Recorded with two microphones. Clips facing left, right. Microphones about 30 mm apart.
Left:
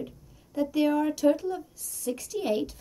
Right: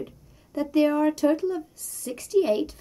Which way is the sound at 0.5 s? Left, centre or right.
Right.